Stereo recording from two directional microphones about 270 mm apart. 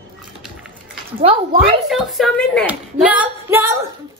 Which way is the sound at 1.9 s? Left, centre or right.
Centre.